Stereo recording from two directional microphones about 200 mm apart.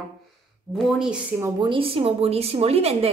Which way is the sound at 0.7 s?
Centre (ahead or behind).